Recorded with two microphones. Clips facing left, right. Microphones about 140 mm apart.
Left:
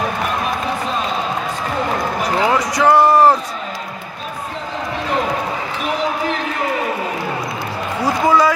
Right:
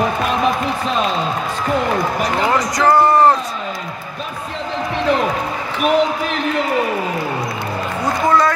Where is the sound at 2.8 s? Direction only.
5° left (ahead or behind).